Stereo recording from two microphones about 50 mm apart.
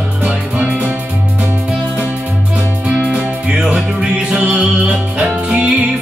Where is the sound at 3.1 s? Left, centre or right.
Centre; by 4.9 s right.